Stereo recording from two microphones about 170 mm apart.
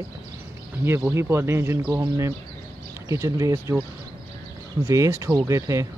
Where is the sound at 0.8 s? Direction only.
15° right (ahead or behind).